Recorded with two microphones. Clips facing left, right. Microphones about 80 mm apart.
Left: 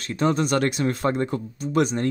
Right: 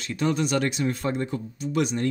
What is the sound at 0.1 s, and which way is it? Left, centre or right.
Speech, left.